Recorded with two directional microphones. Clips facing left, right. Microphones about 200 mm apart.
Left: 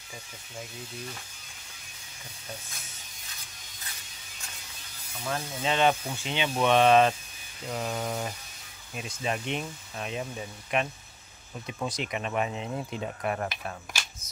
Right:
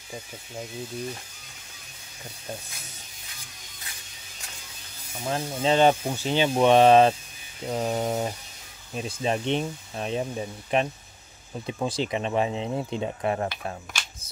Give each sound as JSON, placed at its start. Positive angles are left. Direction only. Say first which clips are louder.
{"t": 5.2, "sound": "speech", "louder": "right 5 dB", "side_deg": -30}